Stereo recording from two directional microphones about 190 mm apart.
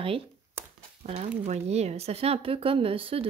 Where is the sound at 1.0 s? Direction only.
35° right (ahead or behind).